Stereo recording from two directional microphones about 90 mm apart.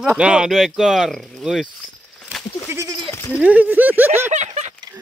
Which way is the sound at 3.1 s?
30° left (ahead or behind).